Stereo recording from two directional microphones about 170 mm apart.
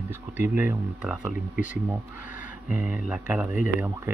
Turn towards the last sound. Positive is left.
turn(degrees=-10)  # may be behind; listen again after turning